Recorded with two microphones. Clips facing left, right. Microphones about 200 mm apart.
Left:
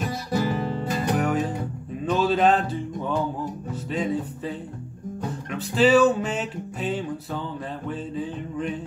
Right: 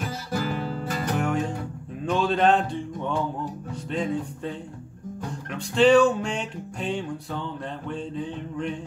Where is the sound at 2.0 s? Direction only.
5° left (ahead or behind).